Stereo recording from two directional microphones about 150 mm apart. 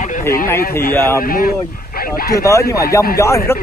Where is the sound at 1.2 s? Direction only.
75° left (ahead or behind).